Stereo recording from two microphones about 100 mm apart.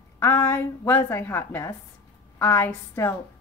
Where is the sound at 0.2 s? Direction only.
25° left (ahead or behind).